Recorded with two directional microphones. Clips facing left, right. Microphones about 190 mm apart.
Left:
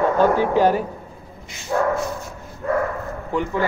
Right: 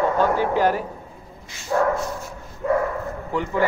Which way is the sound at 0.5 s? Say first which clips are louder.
Left 3 dB; 20° left (ahead or behind).